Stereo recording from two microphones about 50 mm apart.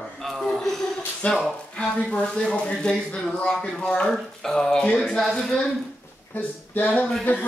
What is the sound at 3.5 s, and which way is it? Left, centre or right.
Speech, centre.